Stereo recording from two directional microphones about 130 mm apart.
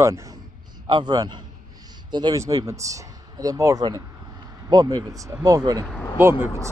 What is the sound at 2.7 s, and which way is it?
Speech, 25° right (ahead or behind).